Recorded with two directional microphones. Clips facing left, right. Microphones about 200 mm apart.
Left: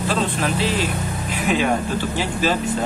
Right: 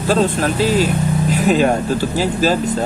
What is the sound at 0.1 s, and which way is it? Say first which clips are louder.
Speech: right 8 dB; 40° right (ahead or behind).